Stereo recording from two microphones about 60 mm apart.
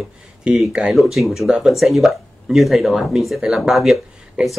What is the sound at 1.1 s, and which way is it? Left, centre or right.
Speech, centre.